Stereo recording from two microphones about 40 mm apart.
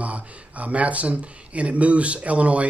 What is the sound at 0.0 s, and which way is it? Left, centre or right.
Speech, right.